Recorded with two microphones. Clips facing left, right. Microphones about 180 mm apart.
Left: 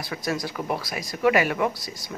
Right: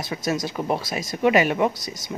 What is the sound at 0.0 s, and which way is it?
Speech, 20° right (ahead or behind).